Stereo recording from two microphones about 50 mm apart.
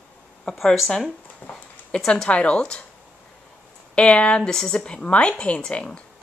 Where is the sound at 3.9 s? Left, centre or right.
Left.